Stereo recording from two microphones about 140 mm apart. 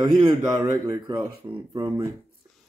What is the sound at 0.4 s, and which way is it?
Speech, 25° right (ahead or behind).